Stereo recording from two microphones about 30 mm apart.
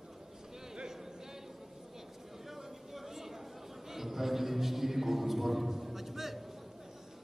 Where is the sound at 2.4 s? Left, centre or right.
Centre.